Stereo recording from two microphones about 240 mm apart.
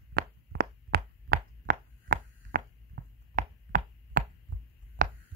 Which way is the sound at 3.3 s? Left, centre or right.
Right.